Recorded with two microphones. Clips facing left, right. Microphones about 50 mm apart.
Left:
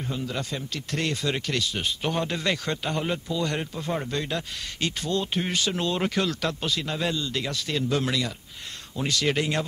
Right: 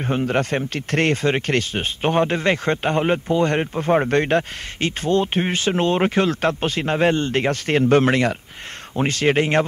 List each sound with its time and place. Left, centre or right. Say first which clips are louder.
0.0 s speech: right 10 dB; right